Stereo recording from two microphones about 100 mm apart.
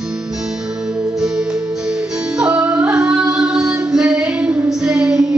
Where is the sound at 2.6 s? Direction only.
10° right (ahead or behind).